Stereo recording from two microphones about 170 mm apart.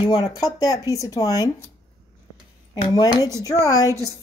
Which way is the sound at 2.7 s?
25° left (ahead or behind).